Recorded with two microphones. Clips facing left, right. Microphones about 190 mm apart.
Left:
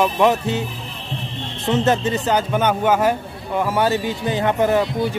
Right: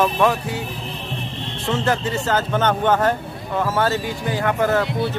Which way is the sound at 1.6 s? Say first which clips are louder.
Left 3 dB; 20° left (ahead or behind).